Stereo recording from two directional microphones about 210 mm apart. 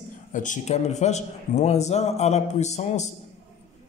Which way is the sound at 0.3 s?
35° left (ahead or behind).